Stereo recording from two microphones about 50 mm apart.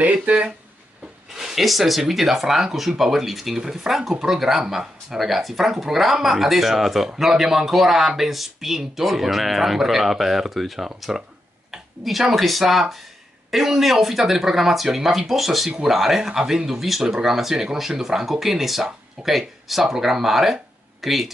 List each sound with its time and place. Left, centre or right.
0.0 s speech: right
1.3 s a sound: centre
1.6 s speech: centre